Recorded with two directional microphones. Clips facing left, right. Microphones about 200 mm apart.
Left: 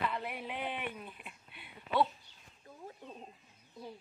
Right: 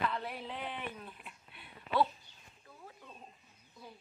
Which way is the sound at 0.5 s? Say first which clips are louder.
Left 2 dB; 20° left (ahead or behind).